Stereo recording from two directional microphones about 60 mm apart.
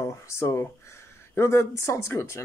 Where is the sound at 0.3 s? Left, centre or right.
Left.